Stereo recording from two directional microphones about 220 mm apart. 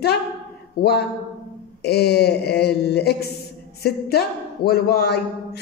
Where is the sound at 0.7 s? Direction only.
45° left (ahead or behind).